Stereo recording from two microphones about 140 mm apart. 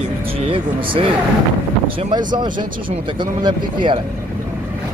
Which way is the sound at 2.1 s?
30° right (ahead or behind).